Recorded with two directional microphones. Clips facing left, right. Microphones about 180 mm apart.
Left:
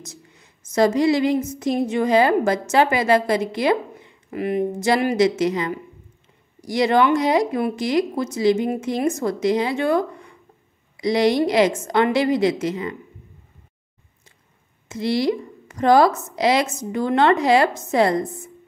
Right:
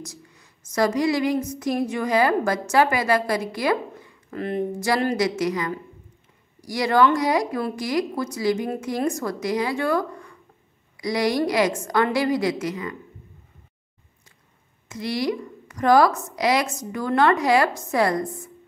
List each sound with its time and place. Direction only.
0.0 s a woman's voice: 25° left (ahead or behind)
4.4 s speech: 15° left (ahead or behind)
14.9 s speech: 25° left (ahead or behind)